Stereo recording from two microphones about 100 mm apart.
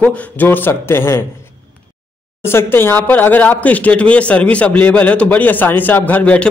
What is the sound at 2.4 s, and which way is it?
Speech, 25° left (ahead or behind).